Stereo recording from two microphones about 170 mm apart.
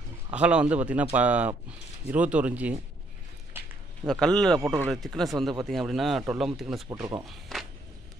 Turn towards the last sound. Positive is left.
turn(degrees=0)  # may be behind; listen again after turning